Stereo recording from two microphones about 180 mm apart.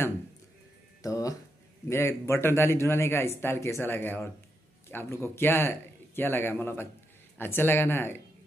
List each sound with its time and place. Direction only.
1.0 s a man's voice: 20° left (ahead or behind)